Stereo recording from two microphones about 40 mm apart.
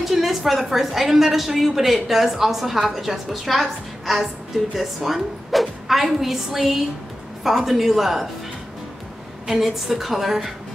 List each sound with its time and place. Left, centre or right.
0.0 s a woman's voice: centre
9.5 s a woman's voice: centre